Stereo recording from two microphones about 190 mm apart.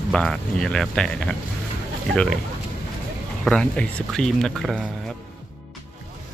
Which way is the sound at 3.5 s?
5° left (ahead or behind).